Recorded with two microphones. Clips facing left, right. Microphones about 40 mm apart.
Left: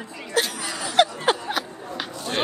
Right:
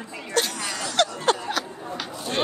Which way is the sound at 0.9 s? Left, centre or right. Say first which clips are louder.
Left 3 dB; centre.